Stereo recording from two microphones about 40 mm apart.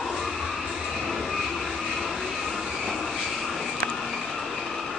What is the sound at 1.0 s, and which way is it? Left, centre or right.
Train, centre.